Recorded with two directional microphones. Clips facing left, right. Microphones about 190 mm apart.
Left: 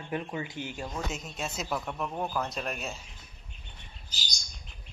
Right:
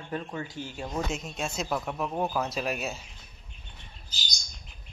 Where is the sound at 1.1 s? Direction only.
Centre (ahead or behind).